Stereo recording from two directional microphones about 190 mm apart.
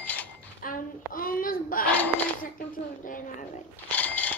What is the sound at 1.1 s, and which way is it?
Speech, 45° left (ahead or behind).